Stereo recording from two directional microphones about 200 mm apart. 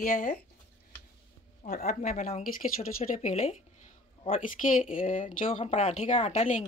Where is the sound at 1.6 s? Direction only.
35° left (ahead or behind).